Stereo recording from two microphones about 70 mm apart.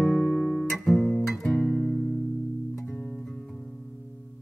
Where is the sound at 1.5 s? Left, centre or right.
Centre.